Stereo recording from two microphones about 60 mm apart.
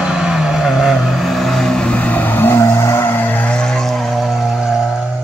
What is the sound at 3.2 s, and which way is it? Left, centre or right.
Vehicle, left.